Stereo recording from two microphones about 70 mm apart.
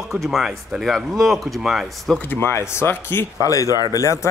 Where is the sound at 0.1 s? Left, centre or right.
Centre.